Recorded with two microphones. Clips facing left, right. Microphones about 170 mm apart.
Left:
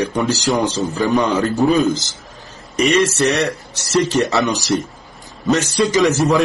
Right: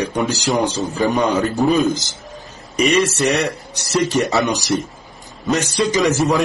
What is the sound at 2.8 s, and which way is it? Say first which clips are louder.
A man's voice: left 1 dB; 10° right (ahead or behind).